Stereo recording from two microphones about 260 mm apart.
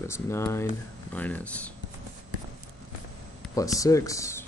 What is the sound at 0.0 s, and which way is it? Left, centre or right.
Speech, centre.